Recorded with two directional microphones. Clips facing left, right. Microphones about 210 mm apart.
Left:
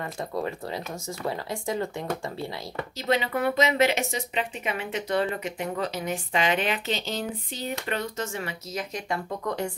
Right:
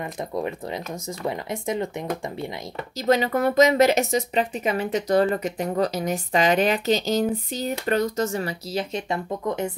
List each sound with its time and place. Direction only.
0.0 s speech: 15° right (ahead or behind)
3.0 s speech: 40° right (ahead or behind); by 9.7 s 20° right (ahead or behind)